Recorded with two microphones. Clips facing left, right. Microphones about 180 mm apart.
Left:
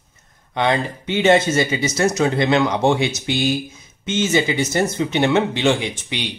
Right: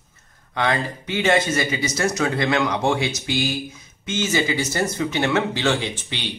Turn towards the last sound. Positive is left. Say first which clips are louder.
# left 3 dB
turn(degrees=15)  # may be behind; listen again after turning